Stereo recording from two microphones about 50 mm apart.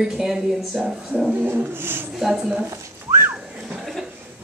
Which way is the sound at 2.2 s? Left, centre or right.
Centre.